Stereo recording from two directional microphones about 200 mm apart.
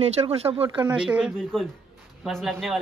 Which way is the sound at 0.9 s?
5° right (ahead or behind).